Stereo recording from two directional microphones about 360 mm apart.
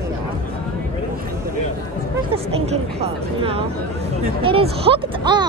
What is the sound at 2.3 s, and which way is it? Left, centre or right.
Speech, centre.